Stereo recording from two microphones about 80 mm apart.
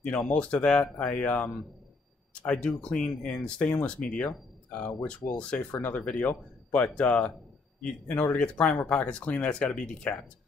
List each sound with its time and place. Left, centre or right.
0.0 s speech: centre